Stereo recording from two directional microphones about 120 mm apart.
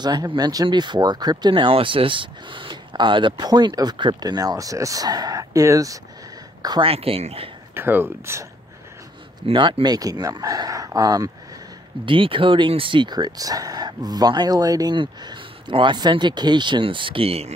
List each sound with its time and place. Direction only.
0.0 s speech: 35° right (ahead or behind)
6.8 s speech: 55° right (ahead or behind)
7.7 s speech: 20° right (ahead or behind)
9.5 s speech: 40° right (ahead or behind)
12.1 s speech: 45° right (ahead or behind); by 15.0 s 30° right (ahead or behind)
15.0 s speech: 45° right (ahead or behind)